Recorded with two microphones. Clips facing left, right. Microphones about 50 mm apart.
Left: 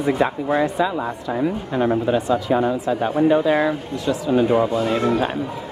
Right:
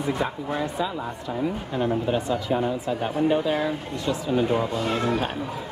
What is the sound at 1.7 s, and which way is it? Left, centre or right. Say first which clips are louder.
Speech: left 5 dB; left.